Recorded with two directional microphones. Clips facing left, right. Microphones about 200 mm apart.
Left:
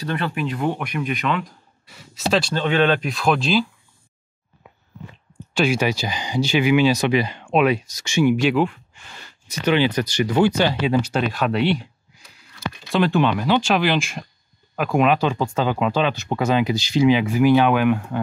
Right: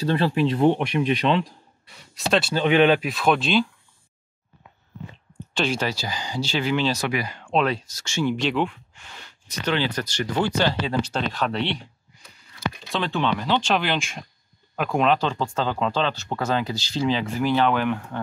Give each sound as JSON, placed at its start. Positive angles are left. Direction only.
{"t": 0.0, "sound": "speech", "side_deg": -30}
{"t": 1.9, "sound": "speech", "side_deg": 0}
{"t": 2.5, "sound": "speech", "side_deg": -15}
{"t": 3.1, "sound": "speech", "side_deg": 0}
{"t": 5.5, "sound": "speech", "side_deg": 10}